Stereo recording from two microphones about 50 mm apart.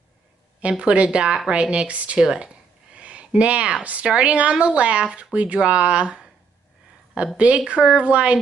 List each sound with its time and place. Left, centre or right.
0.6 s speech: right
2.2 s a sound: centre
3.3 s speech: right